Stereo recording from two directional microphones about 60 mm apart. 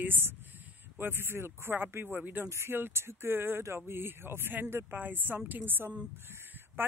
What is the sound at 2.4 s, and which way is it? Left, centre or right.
Speech, right.